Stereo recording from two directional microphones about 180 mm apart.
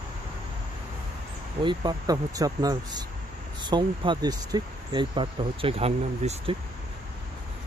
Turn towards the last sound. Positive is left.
turn(degrees=-35)  # may be behind; listen again after turning